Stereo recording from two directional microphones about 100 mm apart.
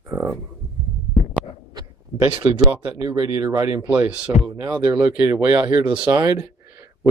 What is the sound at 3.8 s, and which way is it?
Speech, 15° right (ahead or behind).